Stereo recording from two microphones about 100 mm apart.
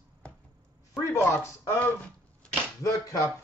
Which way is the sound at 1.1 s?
30° left (ahead or behind).